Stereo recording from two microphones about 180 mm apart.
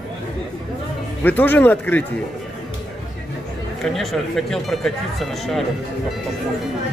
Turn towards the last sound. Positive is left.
turn(degrees=0)  # may be behind; listen again after turning